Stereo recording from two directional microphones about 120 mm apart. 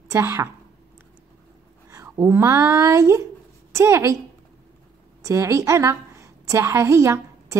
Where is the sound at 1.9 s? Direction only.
25° right (ahead or behind).